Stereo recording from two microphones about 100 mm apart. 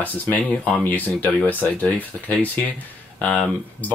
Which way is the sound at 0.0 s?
15° left (ahead or behind).